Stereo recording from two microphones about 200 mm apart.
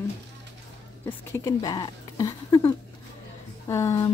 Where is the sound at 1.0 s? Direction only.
15° left (ahead or behind).